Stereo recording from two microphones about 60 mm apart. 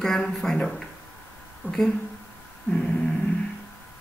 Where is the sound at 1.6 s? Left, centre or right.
Left.